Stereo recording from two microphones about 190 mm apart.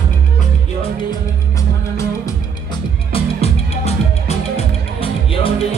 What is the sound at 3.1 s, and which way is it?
Music, 35° left (ahead or behind).